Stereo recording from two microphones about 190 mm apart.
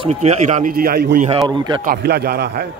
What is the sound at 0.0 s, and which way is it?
A man's voice, 35° right (ahead or behind).